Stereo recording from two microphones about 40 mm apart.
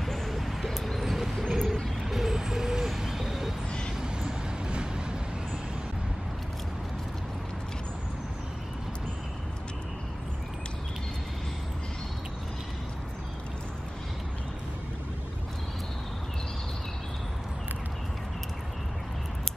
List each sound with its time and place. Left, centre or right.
0.0 s a sound: centre
0.9 s bird: centre
1.5 s vehicle: centre; by 5.0 s right